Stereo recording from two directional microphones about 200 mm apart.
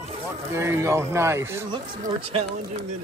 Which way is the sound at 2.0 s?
30° right (ahead or behind).